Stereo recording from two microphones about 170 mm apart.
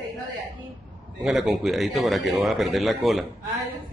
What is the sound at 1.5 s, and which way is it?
A man's voice, centre (ahead or behind).